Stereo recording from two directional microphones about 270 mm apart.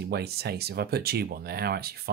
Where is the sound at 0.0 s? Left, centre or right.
Right.